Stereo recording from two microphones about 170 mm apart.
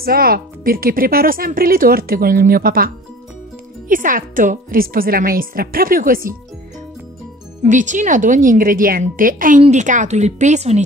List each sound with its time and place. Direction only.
0.0 s a woman's voice: 60° right (ahead or behind)
3.9 s a woman's voice: 50° right (ahead or behind)
7.6 s speech: 45° right (ahead or behind)